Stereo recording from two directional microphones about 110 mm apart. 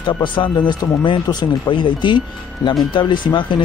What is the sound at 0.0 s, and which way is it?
Speech, 45° left (ahead or behind).